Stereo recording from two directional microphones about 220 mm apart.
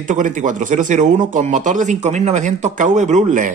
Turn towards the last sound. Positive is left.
turn(degrees=-35)  # may be behind; listen again after turning